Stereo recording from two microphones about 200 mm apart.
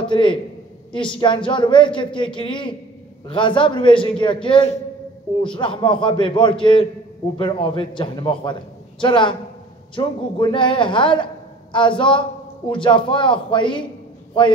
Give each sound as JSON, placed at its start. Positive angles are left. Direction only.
{"t": 0.0, "sound": "a man's voice", "side_deg": 25}